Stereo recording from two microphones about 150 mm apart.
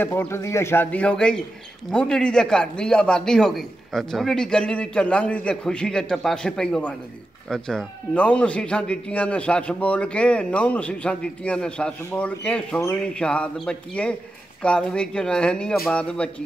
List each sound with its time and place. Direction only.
0.0 s a man's voice: 15° left (ahead or behind)